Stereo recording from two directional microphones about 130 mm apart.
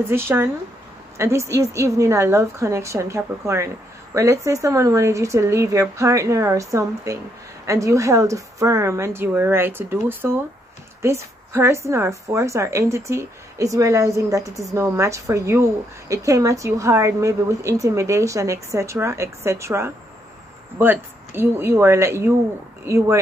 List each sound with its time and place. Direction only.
0.1 s a woman's voice: 20° right (ahead or behind)